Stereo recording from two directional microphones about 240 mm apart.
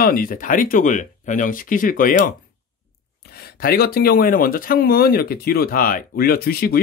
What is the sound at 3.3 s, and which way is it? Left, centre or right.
Speech, left.